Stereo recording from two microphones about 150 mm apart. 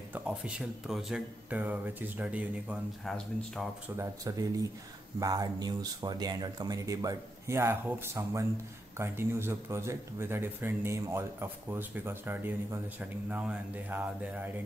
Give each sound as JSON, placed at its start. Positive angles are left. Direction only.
{"t": 0.1, "sound": "speech", "side_deg": -5}
{"t": 3.9, "sound": "speech", "side_deg": -20}